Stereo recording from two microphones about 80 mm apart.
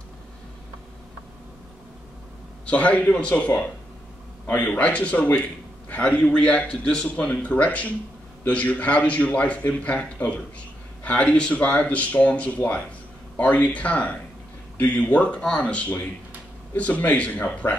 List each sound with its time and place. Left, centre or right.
2.6 s a man's voice: centre